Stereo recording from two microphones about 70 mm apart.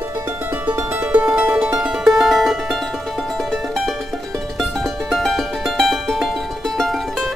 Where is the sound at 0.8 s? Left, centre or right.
Right.